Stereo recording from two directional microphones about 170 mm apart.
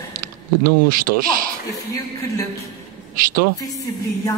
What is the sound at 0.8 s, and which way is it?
Speech, 55° right (ahead or behind).